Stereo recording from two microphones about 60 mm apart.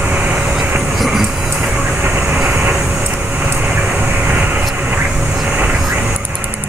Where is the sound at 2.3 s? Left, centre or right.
Centre.